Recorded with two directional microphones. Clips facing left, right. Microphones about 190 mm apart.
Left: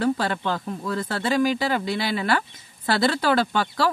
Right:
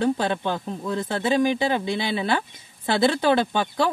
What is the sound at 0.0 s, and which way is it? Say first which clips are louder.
Speech: right 1 dB; 20° right (ahead or behind).